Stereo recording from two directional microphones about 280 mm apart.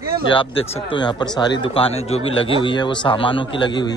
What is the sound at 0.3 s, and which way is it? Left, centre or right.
Speech, centre.